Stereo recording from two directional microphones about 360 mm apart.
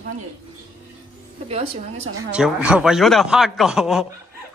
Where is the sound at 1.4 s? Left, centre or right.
Centre.